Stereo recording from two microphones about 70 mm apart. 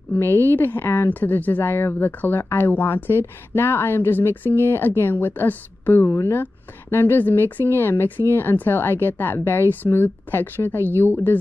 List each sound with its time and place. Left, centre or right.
0.1 s a woman's voice: left